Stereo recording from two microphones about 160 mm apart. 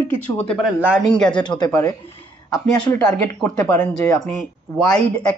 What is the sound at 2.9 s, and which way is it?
Speech, 5° left (ahead or behind).